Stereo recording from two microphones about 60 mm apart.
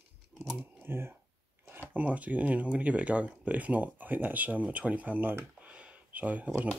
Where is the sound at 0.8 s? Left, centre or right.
Right.